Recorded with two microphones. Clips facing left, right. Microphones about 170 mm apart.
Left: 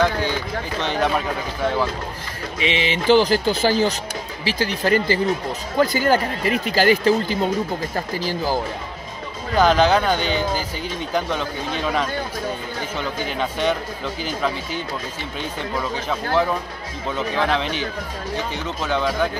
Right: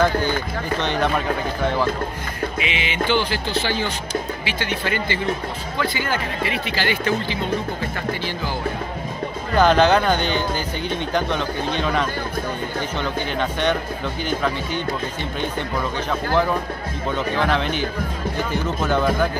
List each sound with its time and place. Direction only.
2.6 s speech: 35° left (ahead or behind)
9.6 s speech: centre (ahead or behind)
13.4 s speech: 5° left (ahead or behind)
17.5 s speech: centre (ahead or behind)